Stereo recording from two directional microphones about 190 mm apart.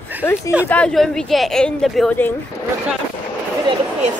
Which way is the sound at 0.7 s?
5° left (ahead or behind).